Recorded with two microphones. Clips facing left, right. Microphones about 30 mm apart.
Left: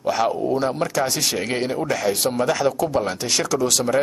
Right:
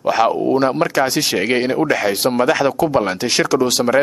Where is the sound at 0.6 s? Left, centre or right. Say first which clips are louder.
Right 6 dB; right.